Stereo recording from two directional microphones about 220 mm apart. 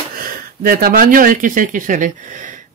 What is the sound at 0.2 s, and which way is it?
Speech, 40° right (ahead or behind).